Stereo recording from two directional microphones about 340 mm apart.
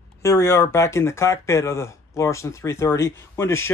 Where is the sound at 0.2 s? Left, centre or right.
Centre.